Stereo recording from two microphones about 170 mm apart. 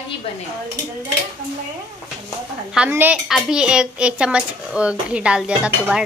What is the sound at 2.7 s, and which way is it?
A woman's voice, 10° right (ahead or behind).